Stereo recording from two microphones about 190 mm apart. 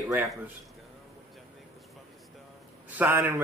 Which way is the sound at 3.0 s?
10° right (ahead or behind).